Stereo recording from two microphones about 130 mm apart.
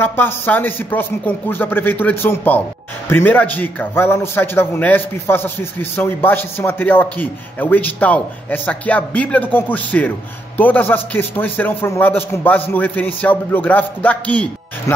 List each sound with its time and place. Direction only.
0.0 s a man's voice: 15° left (ahead or behind)